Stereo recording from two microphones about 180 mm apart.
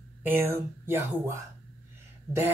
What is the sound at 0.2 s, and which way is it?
Speech, 10° right (ahead or behind).